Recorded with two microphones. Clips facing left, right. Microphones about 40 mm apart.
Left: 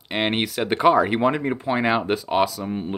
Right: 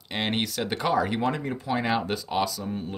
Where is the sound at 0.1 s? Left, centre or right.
Left.